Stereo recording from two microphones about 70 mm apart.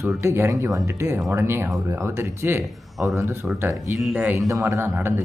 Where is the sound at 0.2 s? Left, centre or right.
Right.